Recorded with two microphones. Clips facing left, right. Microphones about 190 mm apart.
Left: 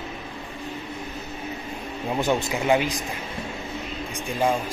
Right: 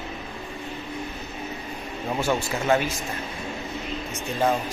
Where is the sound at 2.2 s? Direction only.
15° left (ahead or behind).